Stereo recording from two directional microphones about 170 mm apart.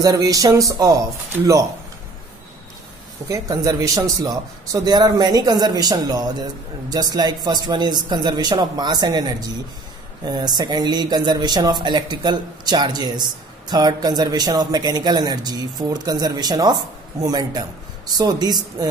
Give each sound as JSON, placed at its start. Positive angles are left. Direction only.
{"t": 0.0, "sound": "speech", "side_deg": -20}
{"t": 3.3, "sound": "speech", "side_deg": -20}